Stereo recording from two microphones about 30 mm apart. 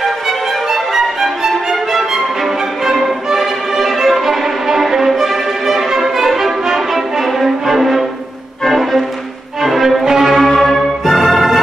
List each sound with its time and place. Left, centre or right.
0.7 s music: centre
2.8 s music: centre
3.3 s violin: centre
5.8 s music: centre
10.0 s music: centre
10.3 s music: centre
11.1 s music: centre